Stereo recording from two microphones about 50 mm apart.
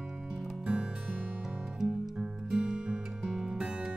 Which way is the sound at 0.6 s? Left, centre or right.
Centre.